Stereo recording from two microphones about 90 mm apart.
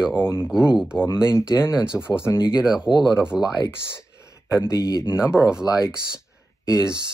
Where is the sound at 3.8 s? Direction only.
30° left (ahead or behind).